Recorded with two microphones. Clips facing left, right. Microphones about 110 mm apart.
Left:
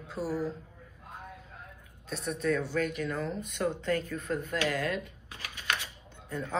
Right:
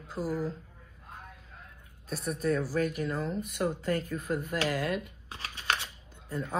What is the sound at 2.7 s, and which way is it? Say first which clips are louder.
Speech: right 1 dB; 35° right (ahead or behind).